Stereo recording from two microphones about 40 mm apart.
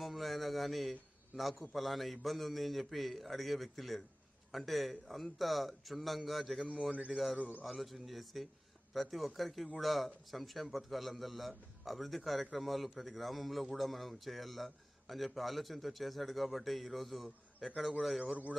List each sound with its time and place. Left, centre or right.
0.0 s a man's voice: centre
7.3 s a man's voice: right
7.6 s a man's voice: centre